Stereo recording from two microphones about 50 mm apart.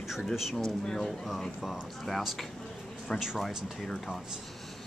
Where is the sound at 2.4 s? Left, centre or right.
Centre.